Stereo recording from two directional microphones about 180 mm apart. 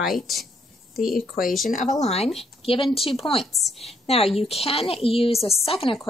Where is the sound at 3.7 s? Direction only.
35° left (ahead or behind).